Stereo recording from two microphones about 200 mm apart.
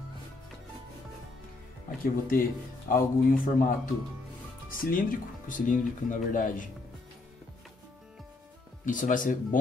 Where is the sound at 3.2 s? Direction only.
45° left (ahead or behind).